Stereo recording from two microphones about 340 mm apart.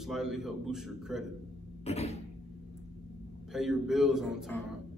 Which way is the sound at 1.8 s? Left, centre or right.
Centre.